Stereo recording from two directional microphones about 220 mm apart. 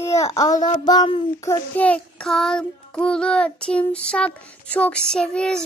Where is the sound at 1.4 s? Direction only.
5° left (ahead or behind).